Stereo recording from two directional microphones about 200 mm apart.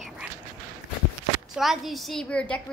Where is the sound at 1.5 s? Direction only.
Centre (ahead or behind).